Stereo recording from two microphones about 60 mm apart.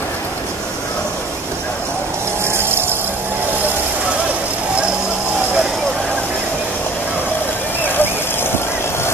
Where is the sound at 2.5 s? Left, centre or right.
Right.